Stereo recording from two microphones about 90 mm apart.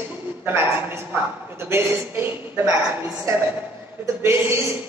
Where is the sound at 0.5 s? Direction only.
30° right (ahead or behind).